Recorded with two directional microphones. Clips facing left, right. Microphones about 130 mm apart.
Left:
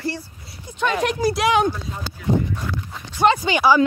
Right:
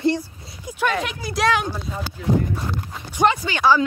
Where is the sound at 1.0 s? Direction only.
40° left (ahead or behind).